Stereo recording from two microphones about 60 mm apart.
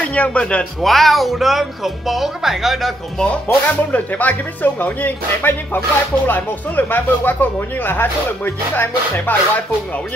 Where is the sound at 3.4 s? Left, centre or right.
Left.